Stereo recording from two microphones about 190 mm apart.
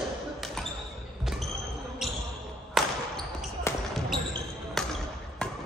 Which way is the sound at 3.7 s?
15° left (ahead or behind).